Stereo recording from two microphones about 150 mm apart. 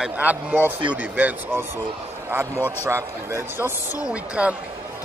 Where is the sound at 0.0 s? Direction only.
10° right (ahead or behind).